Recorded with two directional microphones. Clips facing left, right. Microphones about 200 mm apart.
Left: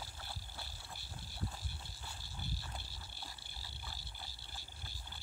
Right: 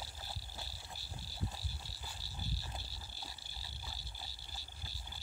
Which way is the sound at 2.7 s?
20° right (ahead or behind).